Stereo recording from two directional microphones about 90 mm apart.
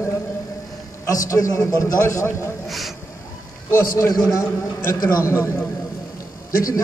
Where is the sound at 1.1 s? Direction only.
40° left (ahead or behind).